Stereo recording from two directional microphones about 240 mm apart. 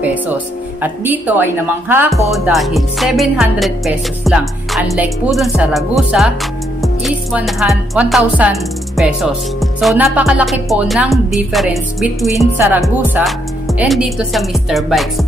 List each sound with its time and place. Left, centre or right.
0.8 s a woman's voice: centre
2.3 s music: centre